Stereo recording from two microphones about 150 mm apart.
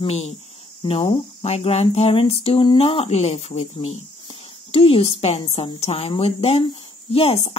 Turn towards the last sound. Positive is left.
turn(degrees=40)  # may be behind; listen again after turning